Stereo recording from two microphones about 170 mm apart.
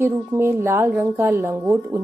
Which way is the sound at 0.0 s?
15° right (ahead or behind).